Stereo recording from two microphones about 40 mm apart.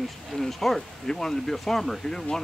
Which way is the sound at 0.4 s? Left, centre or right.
Centre.